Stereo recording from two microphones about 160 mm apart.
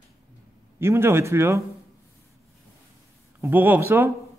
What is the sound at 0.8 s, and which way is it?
Speech, 15° right (ahead or behind).